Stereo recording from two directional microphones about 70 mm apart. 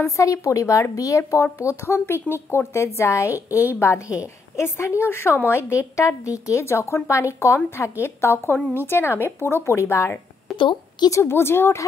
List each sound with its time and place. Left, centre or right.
0.2 s speech: left
2.3 s speech: centre
2.7 s a woman's voice: left
10.5 s a sound: centre
11.1 s a woman's voice: left